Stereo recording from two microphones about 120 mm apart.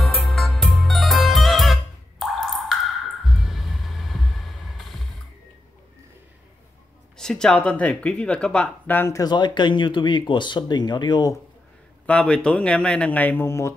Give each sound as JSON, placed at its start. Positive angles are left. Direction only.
{"t": 0.0, "sound": "music", "side_deg": 0}
{"t": 3.3, "sound": "mechanisms", "side_deg": 0}
{"t": 7.2, "sound": "speech", "side_deg": 5}
{"t": 8.9, "sound": "speech", "side_deg": 25}
{"t": 12.1, "sound": "speech", "side_deg": 10}